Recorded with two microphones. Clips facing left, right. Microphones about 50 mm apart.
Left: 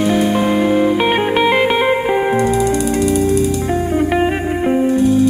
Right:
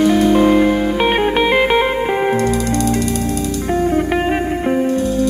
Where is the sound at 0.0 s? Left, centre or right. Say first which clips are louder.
Right 3 dB; centre.